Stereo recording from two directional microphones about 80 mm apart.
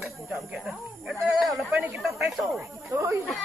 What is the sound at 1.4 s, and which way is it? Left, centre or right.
Speech, centre.